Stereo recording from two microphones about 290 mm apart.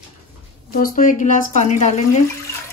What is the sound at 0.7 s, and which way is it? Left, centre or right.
Speech, left.